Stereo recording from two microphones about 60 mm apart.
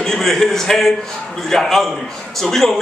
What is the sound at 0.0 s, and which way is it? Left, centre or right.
A man's voice, centre.